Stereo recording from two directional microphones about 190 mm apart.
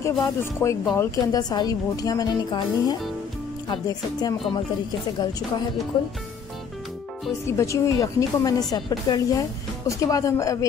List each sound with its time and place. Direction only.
0.0 s a woman's voice: 15° left (ahead or behind)
7.4 s a woman's voice: 15° left (ahead or behind)